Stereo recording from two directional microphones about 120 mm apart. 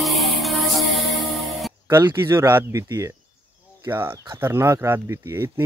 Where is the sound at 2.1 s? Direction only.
20° right (ahead or behind).